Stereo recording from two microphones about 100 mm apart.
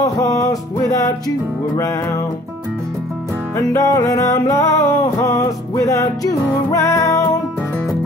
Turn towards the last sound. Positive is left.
turn(degrees=30)  # may be behind; listen again after turning